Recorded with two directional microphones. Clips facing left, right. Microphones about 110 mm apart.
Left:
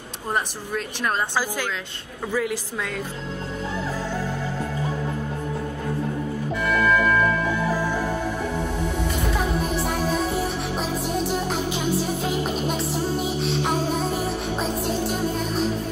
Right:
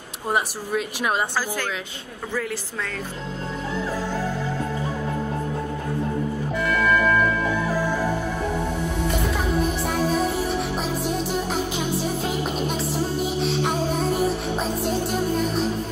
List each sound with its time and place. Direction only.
0.3 s speech: 10° right (ahead or behind)
6.6 s music: centre (ahead or behind)